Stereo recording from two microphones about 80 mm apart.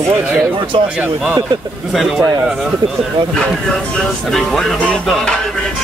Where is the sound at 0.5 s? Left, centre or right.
Right.